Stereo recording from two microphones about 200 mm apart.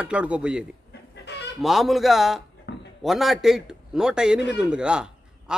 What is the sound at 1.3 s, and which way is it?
Chicken, 60° left (ahead or behind).